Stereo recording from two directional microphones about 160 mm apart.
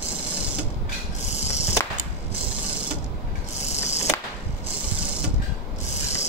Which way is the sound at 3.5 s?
45° left (ahead or behind).